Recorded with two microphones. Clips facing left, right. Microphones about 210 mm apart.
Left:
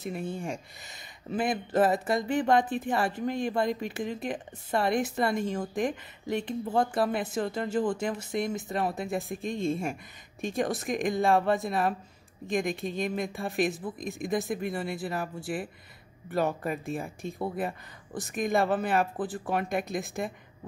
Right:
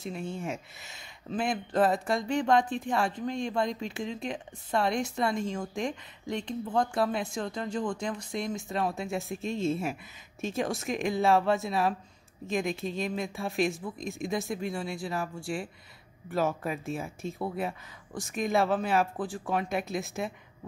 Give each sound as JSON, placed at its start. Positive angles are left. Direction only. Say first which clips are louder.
{"t": 0.0, "sound": "speech", "louder": "left 1 dB", "side_deg": 5}